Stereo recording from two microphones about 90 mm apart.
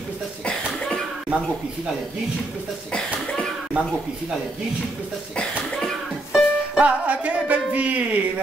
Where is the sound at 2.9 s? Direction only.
5° left (ahead or behind).